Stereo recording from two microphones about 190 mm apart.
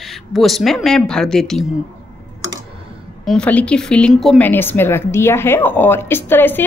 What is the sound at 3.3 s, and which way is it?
Speech, 5° left (ahead or behind).